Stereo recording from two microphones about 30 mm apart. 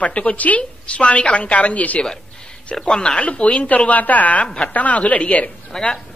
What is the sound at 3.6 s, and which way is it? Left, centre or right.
A woman's voice, left.